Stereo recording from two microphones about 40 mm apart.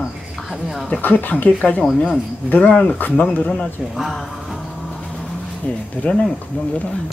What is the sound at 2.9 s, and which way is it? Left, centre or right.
Speech, left.